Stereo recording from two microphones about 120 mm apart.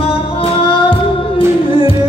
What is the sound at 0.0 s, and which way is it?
Music, 50° left (ahead or behind).